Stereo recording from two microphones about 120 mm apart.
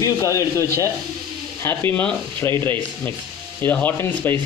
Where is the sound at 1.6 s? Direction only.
20° left (ahead or behind).